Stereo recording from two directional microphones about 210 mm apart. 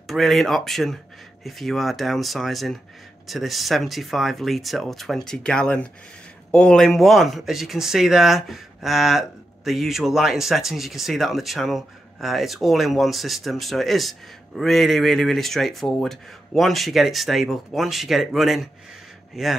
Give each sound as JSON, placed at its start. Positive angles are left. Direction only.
{"t": 0.0, "sound": "speech", "side_deg": 0}